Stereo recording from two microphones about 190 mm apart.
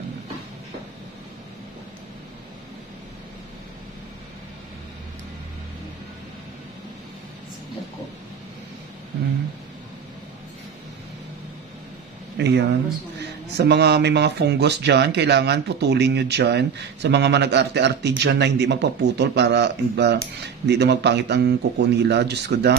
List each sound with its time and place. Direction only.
12.4 s speech: 65° right (ahead or behind)